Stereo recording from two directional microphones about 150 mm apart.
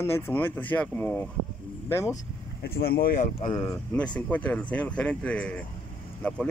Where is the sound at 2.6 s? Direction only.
90° left; by 3.3 s 70° left (ahead or behind).